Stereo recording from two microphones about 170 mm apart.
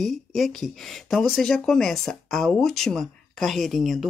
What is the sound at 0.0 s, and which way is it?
Speech, centre (ahead or behind).